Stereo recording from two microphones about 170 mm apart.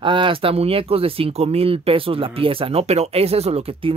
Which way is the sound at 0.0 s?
30° right (ahead or behind).